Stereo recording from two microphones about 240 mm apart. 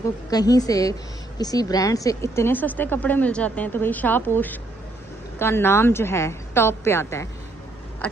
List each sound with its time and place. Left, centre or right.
0.3 s a woman's voice: centre